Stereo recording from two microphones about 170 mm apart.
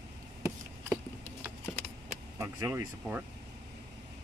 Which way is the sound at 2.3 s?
15° right (ahead or behind).